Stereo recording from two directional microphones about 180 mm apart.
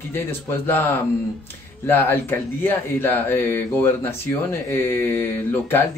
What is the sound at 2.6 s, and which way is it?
Speech, 10° left (ahead or behind).